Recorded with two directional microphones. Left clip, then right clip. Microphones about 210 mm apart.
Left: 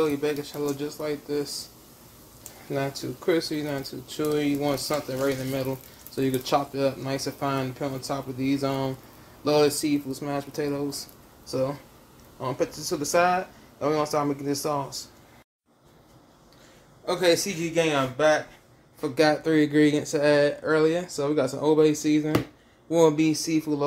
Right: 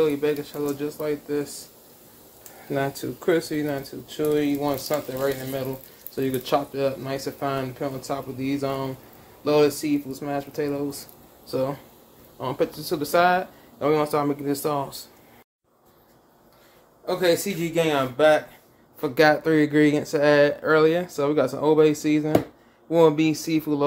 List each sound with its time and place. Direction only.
0.0 s speech: centre (ahead or behind)
2.7 s speech: 10° right (ahead or behind)
12.4 s speech: 15° right (ahead or behind)
17.0 s speech: 5° right (ahead or behind)
17.6 s speech: 25° right (ahead or behind)
18.9 s speech: 15° right (ahead or behind)